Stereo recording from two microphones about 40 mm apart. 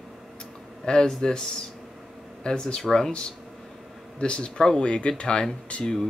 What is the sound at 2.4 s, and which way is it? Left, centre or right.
Speech, left.